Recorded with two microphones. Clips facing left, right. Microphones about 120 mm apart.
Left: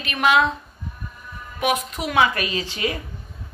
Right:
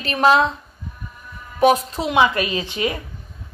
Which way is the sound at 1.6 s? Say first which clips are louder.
Right 7 dB; 30° right (ahead or behind).